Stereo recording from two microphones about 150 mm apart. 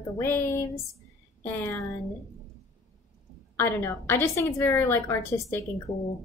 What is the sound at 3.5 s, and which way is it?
A woman's voice, 15° left (ahead or behind).